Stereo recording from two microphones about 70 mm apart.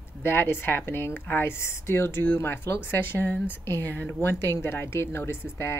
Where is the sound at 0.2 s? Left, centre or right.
Left.